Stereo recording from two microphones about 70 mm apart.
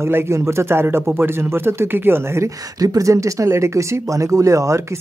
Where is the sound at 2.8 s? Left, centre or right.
Right.